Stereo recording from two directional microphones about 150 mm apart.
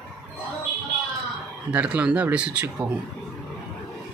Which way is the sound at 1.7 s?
10° right (ahead or behind).